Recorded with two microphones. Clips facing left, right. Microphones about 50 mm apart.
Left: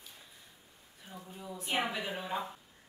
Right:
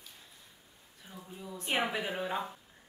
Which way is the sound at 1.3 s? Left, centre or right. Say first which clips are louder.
Right 1 dB; centre.